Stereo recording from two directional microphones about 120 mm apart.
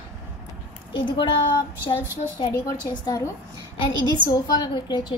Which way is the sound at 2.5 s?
25° left (ahead or behind).